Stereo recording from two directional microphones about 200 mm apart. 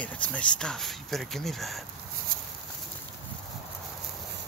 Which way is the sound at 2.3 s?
45° right (ahead or behind).